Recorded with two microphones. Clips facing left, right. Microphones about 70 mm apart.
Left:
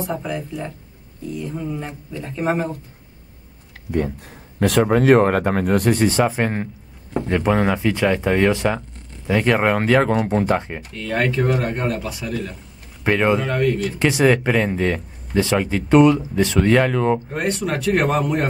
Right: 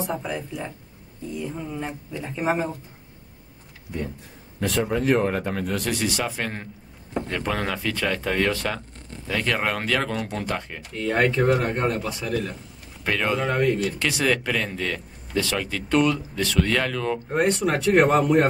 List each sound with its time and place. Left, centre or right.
0.0 s speech: centre
4.6 s speech: left
11.0 s speech: centre
11.2 s speech: centre
13.0 s speech: left
13.4 s speech: centre
13.9 s speech: left
17.4 s speech: centre